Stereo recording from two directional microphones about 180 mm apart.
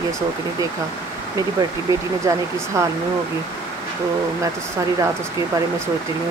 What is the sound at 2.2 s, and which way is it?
Speech, 15° right (ahead or behind).